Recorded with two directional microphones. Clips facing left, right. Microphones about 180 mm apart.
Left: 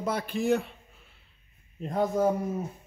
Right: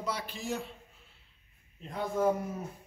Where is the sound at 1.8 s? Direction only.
45° left (ahead or behind).